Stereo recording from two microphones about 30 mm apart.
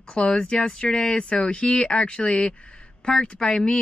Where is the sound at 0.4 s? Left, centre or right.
Left.